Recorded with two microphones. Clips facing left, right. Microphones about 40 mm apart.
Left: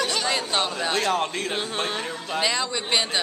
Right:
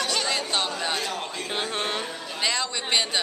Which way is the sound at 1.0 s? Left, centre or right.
Left.